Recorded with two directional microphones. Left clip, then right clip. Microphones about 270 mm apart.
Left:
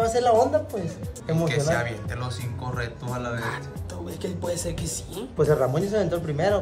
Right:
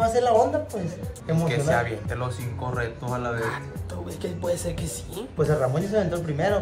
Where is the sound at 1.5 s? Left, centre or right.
Centre.